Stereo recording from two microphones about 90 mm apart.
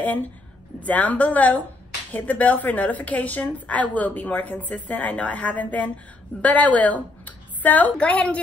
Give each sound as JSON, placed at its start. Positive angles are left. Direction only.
{"t": 0.0, "sound": "a woman's voice", "side_deg": 20}